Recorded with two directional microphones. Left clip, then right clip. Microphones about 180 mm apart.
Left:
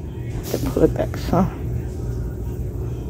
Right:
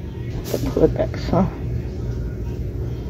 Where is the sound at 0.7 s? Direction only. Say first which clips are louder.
Right 1 dB; 30° left (ahead or behind).